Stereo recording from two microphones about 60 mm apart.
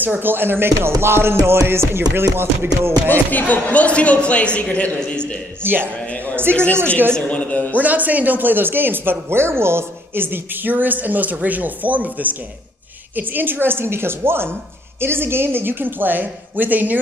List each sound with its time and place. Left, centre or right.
0.0 s speech: right
1.0 s music: right
2.1 s speech: right
3.1 s speech: left
5.6 s speech: right
7.2 s speech: left
7.8 s speech: right